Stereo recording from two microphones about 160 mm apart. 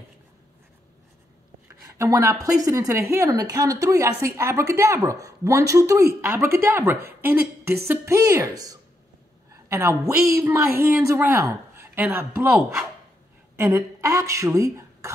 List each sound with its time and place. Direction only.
2.0 s speech: 20° right (ahead or behind)
11.7 s a sound: 15° right (ahead or behind)
13.6 s a woman's voice: 20° right (ahead or behind)